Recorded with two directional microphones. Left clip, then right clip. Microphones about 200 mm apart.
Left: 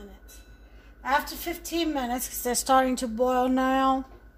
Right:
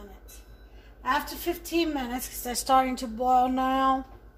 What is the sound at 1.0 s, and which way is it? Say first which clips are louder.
A woman's voice: left 1 dB; 50° left (ahead or behind).